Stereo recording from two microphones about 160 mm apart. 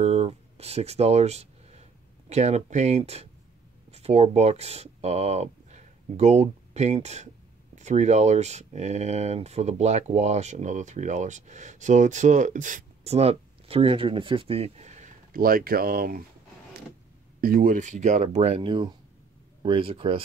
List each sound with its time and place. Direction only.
0.0 s a sound: 40° right (ahead or behind)
3.9 s speech: 40° right (ahead or behind)
15.4 s speech: 65° right (ahead or behind)
17.4 s speech: 65° right (ahead or behind); by 20.2 s 35° right (ahead or behind)